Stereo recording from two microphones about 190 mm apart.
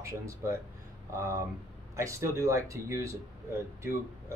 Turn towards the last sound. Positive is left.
turn(degrees=-15)  # may be behind; listen again after turning